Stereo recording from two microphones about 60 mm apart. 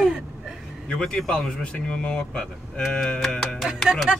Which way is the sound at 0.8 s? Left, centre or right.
Centre.